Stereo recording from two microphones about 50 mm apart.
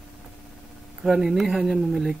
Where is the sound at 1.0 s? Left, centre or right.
Centre.